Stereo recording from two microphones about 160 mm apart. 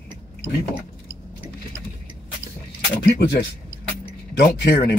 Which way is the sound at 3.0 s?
90° left.